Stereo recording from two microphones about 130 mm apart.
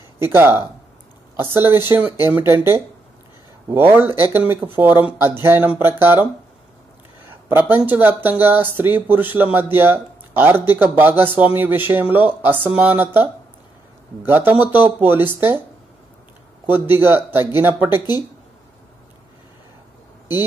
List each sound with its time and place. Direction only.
0.3 s speech: 20° right (ahead or behind)
1.7 s speech: 15° right (ahead or behind)
7.2 s speech: 15° right (ahead or behind)
16.6 s speech: 15° right (ahead or behind)